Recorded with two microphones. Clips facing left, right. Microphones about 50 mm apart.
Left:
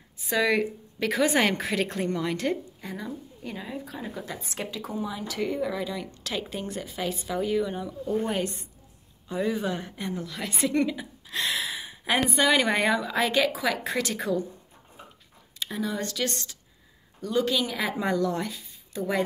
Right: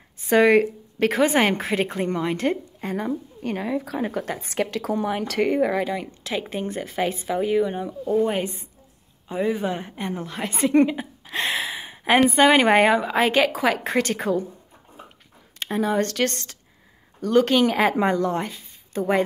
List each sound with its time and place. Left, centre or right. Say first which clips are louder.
0.2 s speech: right 8 dB; right
1.1 s a woman's voice: right 3 dB; right
2.8 s a woman's voice: right 9 dB; right
6.2 s a woman's voice: right 4 dB; right
15.6 s speech: right 8 dB; right
17.2 s speech: right 8 dB; right
18.1 s speech: right 3 dB; right